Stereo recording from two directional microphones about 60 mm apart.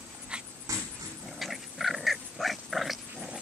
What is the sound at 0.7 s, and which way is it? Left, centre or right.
Dog, right.